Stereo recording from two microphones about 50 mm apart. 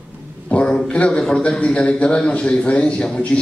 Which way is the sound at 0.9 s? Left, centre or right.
Centre.